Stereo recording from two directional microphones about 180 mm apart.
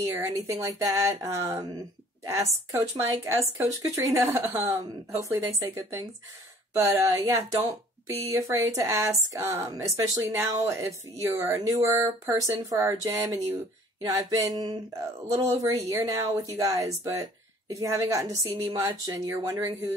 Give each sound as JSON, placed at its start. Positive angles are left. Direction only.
{"t": 0.0, "sound": "a woman's voice", "side_deg": -15}
{"t": 14.0, "sound": "a sound", "side_deg": -20}
{"t": 15.3, "sound": "a woman's voice", "side_deg": -15}